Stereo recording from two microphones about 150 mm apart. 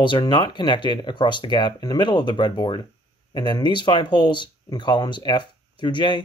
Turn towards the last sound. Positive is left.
turn(degrees=30)  # may be behind; listen again after turning